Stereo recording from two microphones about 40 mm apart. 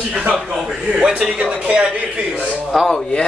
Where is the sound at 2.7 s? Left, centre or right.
Centre.